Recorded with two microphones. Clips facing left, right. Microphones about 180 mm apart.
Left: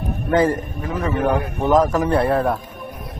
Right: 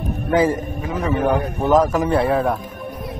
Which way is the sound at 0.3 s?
5° right (ahead or behind).